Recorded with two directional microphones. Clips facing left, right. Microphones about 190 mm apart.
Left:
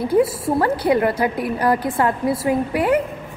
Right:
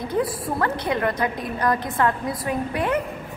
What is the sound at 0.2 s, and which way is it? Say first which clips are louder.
A woman's voice: left 6 dB; 25° left (ahead or behind).